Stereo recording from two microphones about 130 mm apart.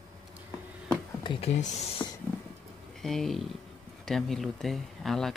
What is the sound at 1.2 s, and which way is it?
Speech, 40° left (ahead or behind).